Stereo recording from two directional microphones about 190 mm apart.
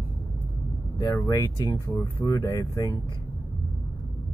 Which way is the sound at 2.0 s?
15° left (ahead or behind).